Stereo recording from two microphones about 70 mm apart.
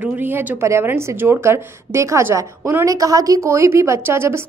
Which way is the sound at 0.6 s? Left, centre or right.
Right.